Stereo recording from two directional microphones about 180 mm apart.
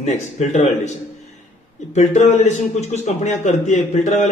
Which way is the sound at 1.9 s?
40° left (ahead or behind).